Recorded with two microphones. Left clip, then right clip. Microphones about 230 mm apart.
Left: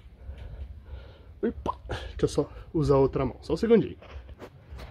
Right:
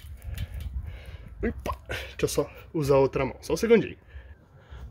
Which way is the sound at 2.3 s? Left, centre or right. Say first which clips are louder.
Even; centre.